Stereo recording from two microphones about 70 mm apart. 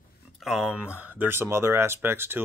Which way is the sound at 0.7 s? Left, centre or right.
Right.